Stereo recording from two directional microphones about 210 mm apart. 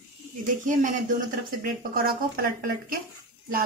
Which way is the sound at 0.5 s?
35° right (ahead or behind).